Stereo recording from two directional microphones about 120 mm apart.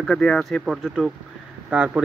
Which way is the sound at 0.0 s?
5° left (ahead or behind).